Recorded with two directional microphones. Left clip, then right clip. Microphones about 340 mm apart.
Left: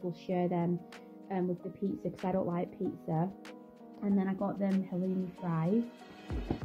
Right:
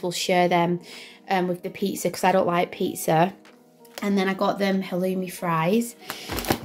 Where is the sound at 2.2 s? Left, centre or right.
Centre.